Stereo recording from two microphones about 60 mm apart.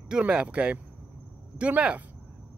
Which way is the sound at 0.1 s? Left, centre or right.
Centre.